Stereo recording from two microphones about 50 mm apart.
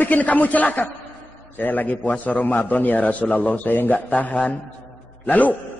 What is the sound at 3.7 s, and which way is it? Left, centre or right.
Speech, left.